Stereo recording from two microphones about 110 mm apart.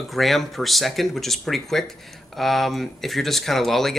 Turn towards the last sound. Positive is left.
turn(degrees=0)  # may be behind; listen again after turning